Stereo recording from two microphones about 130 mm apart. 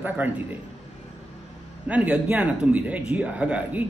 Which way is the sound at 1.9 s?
10° right (ahead or behind).